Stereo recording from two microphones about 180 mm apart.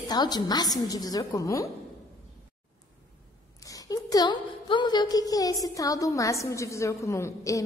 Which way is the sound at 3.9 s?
20° left (ahead or behind).